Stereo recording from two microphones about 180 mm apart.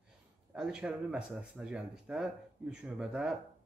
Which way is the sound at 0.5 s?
5° right (ahead or behind).